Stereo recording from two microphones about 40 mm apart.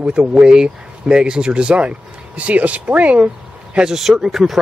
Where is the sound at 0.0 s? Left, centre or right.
Right.